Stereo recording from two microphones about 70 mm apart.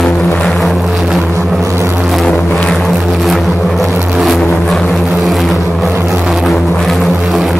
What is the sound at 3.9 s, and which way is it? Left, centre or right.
Vehicle, right.